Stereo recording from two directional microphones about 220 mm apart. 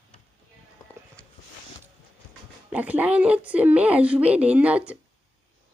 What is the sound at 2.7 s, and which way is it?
A woman's voice, 5° right (ahead or behind).